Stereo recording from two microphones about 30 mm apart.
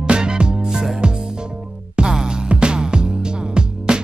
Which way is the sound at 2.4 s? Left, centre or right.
Right.